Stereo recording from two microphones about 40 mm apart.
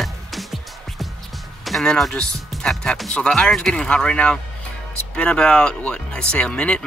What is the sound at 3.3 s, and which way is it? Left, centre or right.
Speech, centre.